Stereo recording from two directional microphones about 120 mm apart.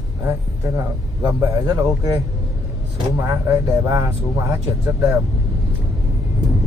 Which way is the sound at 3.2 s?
30° right (ahead or behind).